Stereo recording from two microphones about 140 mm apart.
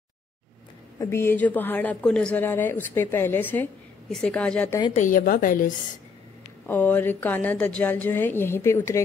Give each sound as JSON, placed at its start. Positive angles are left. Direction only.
{"t": 0.9, "sound": "speech", "side_deg": 15}
{"t": 4.9, "sound": "a woman's voice", "side_deg": 70}
{"t": 6.6, "sound": "speech", "side_deg": 10}